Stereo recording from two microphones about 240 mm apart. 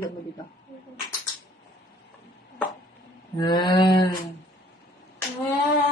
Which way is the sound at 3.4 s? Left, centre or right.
Centre.